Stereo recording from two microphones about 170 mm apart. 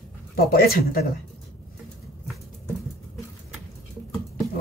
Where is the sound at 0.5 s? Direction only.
60° left (ahead or behind).